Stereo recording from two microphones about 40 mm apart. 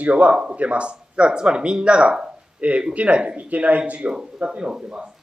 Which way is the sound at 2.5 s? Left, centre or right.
Right.